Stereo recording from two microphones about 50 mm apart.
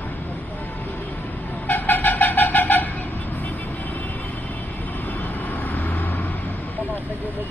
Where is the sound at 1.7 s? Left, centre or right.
Left.